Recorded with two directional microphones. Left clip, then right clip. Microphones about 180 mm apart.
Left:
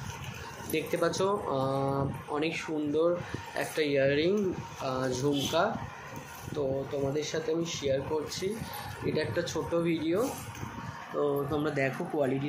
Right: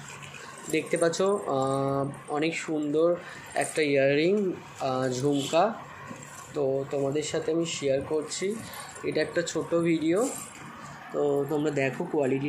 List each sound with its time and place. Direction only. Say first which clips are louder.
0.7 s speech: right 4 dB; 20° right (ahead or behind)
11.1 s speech: right 3 dB; 10° right (ahead or behind)